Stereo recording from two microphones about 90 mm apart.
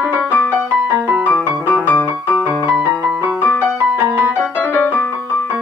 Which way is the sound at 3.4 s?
25° left (ahead or behind).